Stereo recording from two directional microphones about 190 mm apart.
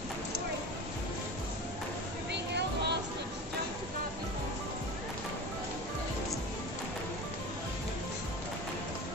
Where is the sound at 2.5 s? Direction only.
60° right (ahead or behind).